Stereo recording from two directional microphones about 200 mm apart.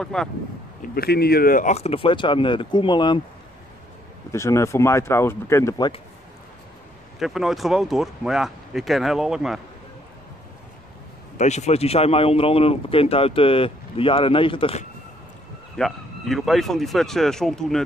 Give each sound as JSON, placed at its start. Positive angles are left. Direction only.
{"t": 0.0, "sound": "speech", "side_deg": 5}
{"t": 0.9, "sound": "a man's voice", "side_deg": 50}
{"t": 4.3, "sound": "speech", "side_deg": 15}
{"t": 7.2, "sound": "speech", "side_deg": 0}
{"t": 11.3, "sound": "a man's voice", "side_deg": 35}
{"t": 15.7, "sound": "speech", "side_deg": 0}